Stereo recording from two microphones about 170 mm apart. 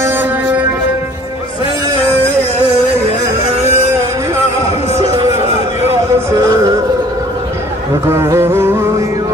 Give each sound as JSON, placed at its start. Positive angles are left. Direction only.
{"t": 0.0, "sound": "music", "side_deg": -10}
{"t": 3.6, "sound": "vehicle", "side_deg": -15}
{"t": 6.3, "sound": "music", "side_deg": -20}
{"t": 8.1, "sound": "music", "side_deg": -15}